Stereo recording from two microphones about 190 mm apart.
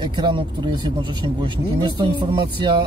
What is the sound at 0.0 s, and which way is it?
Speech, 25° right (ahead or behind).